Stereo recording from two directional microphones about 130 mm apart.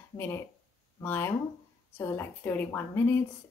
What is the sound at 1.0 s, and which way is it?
A woman's voice, 15° left (ahead or behind).